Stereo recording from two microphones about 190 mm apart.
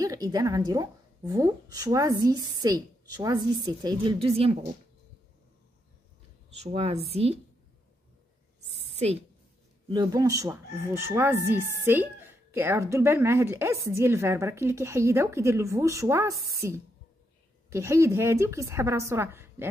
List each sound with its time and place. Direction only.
0.0 s a woman's voice: 20° right (ahead or behind)
6.6 s a woman's voice: 35° right (ahead or behind)
8.9 s a woman's voice: 35° right (ahead or behind)
9.8 s speech: 20° right (ahead or behind)